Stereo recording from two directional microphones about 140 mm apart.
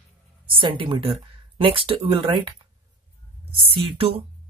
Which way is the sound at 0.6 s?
35° right (ahead or behind).